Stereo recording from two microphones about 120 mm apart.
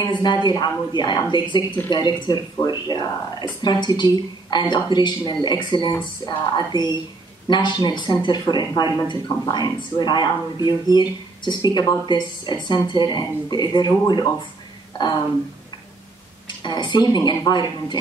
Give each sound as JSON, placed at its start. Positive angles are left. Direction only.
{"t": 0.0, "sound": "speech", "side_deg": 40}
{"t": 16.4, "sound": "speech", "side_deg": 40}